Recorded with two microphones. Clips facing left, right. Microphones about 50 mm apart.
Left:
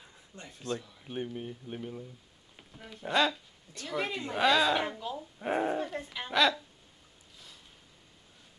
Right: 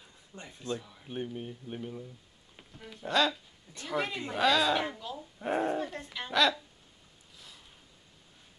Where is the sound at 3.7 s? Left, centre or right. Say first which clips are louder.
Right 2 dB; right.